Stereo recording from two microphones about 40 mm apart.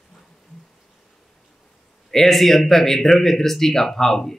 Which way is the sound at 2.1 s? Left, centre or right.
Centre.